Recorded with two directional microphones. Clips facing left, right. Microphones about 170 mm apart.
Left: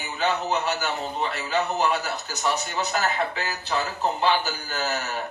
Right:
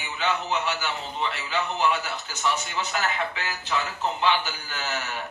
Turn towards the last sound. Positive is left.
turn(degrees=40)  # may be behind; listen again after turning